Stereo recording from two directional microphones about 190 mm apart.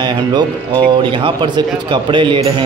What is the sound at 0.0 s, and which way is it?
A man's voice, 20° right (ahead or behind).